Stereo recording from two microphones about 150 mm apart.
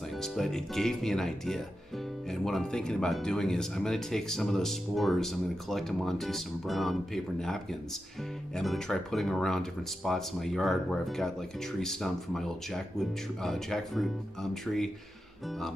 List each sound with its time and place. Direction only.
0.2 s speech: centre (ahead or behind)